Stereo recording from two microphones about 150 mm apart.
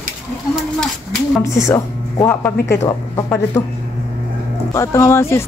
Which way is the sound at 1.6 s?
15° left (ahead or behind).